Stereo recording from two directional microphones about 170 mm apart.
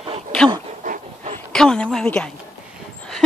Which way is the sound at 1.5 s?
5° left (ahead or behind).